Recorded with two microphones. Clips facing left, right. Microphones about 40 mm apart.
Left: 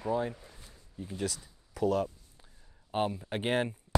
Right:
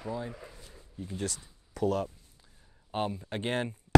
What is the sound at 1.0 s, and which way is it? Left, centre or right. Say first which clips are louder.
Speech: left 1 dB; centre.